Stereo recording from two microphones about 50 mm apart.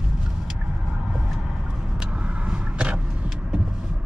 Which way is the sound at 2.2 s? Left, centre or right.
Right.